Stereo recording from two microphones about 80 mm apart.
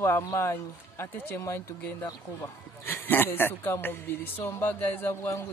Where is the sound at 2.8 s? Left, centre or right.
Left.